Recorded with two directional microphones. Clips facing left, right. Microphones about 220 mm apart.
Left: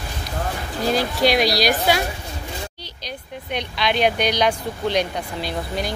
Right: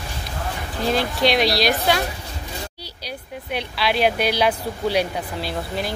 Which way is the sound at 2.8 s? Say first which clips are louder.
Even; 10° right (ahead or behind).